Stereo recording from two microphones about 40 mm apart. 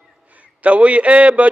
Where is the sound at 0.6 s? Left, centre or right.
Right.